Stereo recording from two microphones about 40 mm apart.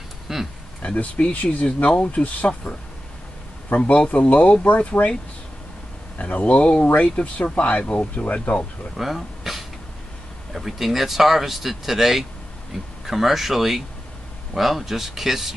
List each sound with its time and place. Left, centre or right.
0.3 s a sound: centre
0.8 s speech: left
3.7 s speech: left
6.1 s speech: left
8.9 s a sound: centre
10.5 s speech: centre